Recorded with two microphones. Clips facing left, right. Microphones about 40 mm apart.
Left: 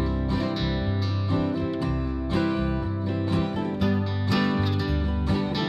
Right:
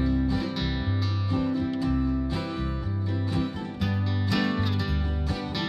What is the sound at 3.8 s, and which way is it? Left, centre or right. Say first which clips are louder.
Music: left 4 dB; centre.